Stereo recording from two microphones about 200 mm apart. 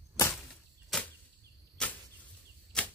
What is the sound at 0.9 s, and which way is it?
Arrow, centre (ahead or behind).